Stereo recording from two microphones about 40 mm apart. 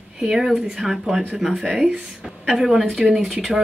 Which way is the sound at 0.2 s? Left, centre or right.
Centre.